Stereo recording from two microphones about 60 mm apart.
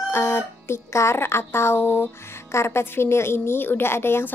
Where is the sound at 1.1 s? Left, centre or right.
Left.